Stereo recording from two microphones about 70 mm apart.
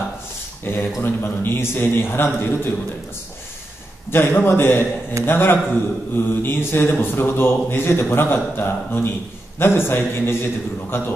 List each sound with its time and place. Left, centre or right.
0.7 s speech: left
4.1 s speech: left